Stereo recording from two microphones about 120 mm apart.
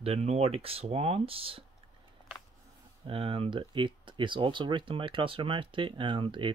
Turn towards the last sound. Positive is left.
turn(degrees=-45)  # may be behind; listen again after turning